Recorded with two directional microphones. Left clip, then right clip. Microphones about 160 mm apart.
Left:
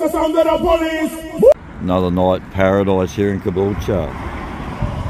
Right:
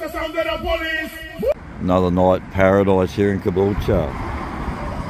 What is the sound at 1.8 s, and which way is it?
Speech, centre (ahead or behind).